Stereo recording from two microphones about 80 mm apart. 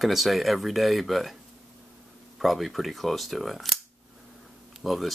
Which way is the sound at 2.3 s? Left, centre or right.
Centre.